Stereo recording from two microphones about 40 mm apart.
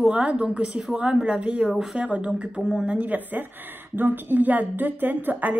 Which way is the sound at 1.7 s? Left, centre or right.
Centre.